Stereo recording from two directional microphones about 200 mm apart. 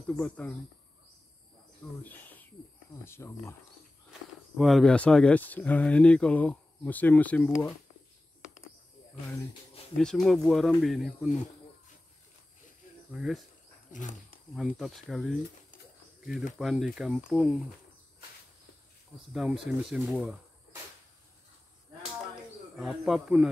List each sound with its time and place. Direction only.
0.0 s speech: 5° left (ahead or behind)
1.8 s speech: 10° left (ahead or behind)
3.1 s speech: 15° left (ahead or behind)
4.6 s speech: centre (ahead or behind)
9.1 s speech: 25° left (ahead or behind)
9.9 s speech: centre (ahead or behind)
13.1 s speech: 5° right (ahead or behind)
13.9 s speech: 40° left (ahead or behind)
14.5 s speech: centre (ahead or behind)
16.5 s speech: centre (ahead or behind)
19.3 s speech: 5° right (ahead or behind)
22.8 s speech: centre (ahead or behind)